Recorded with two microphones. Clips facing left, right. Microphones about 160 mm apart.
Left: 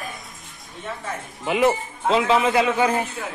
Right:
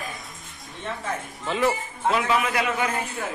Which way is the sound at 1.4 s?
20° left (ahead or behind).